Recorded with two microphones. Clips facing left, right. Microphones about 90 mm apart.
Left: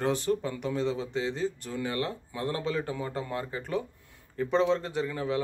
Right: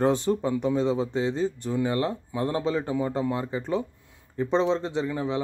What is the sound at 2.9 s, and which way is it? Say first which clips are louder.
A man's voice: right 7 dB; 15° right (ahead or behind).